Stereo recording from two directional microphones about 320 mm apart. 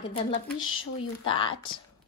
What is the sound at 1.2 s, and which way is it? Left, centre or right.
Speech, centre.